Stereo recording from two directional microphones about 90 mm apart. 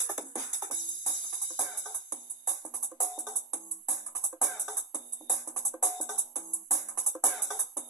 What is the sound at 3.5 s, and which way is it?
Music, 35° right (ahead or behind).